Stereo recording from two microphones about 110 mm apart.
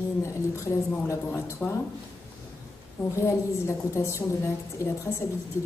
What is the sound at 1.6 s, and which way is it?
Speech, 15° left (ahead or behind).